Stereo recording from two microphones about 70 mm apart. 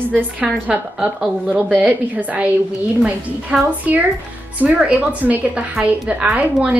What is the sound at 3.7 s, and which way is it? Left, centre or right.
A woman's voice, right.